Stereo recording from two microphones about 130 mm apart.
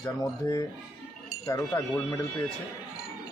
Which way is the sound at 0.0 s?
25° left (ahead or behind).